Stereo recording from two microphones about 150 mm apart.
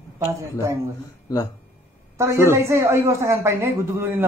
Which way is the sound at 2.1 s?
15° right (ahead or behind).